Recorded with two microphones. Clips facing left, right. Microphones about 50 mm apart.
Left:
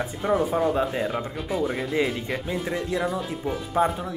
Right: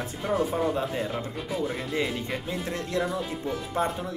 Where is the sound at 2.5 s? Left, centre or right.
Left.